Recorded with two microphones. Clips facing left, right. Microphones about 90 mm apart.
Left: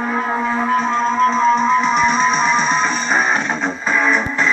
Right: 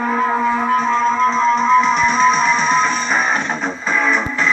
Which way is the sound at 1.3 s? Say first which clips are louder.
Even; 10° left (ahead or behind).